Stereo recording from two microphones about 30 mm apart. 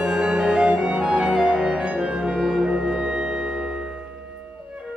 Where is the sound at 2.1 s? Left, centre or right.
Right.